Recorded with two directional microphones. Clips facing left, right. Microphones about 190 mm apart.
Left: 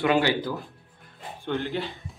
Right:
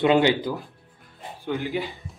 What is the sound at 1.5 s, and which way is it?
Speech, centre (ahead or behind).